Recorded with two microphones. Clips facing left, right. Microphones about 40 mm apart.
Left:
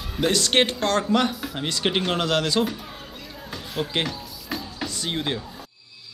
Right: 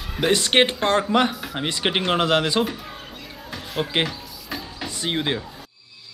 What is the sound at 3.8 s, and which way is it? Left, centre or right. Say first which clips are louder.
Speech: right 3 dB; centre.